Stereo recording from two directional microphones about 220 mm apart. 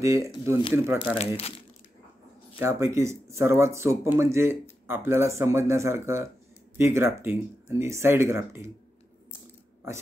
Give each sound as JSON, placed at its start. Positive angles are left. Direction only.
{"t": 0.0, "sound": "speech", "side_deg": -15}
{"t": 1.1, "sound": "speech", "side_deg": 25}
{"t": 2.6, "sound": "speech", "side_deg": -15}